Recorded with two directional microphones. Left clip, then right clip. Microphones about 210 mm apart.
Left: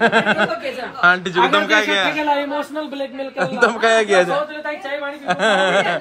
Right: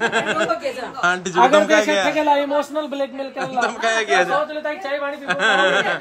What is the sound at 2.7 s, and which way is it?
Speech, centre (ahead or behind).